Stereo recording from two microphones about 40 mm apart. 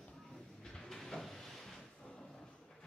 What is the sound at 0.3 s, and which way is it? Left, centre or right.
Vehicle, centre.